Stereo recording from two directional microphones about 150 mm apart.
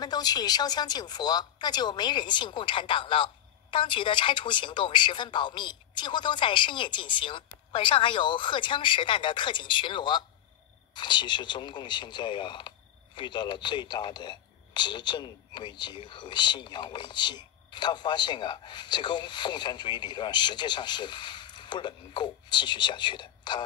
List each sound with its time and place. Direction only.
0.0 s a woman's voice: 25° left (ahead or behind)